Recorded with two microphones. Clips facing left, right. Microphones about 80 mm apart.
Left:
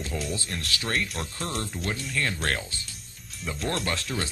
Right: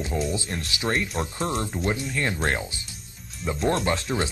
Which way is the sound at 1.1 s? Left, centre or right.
Centre.